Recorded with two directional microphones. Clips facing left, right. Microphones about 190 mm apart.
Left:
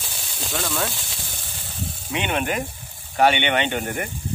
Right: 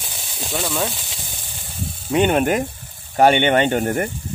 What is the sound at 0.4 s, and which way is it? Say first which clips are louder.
Speech: right 3 dB; 15° right (ahead or behind).